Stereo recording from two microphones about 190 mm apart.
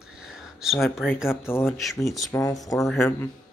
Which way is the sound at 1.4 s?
10° left (ahead or behind).